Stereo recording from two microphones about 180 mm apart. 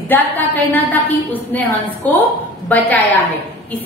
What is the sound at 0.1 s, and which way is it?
A woman's voice, 10° left (ahead or behind).